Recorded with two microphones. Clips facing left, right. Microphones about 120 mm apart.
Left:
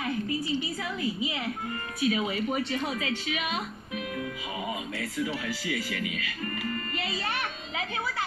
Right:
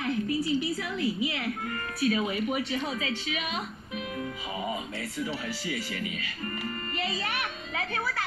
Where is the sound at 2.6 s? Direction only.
35° left (ahead or behind).